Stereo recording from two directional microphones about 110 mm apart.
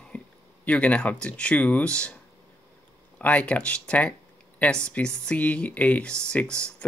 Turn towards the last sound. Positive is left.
turn(degrees=10)  # may be behind; listen again after turning